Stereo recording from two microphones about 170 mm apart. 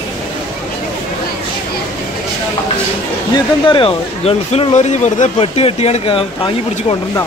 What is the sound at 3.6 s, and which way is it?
Speech, 30° left (ahead or behind).